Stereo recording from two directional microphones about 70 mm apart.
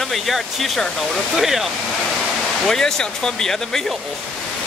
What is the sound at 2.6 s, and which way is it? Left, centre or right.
Speech, centre.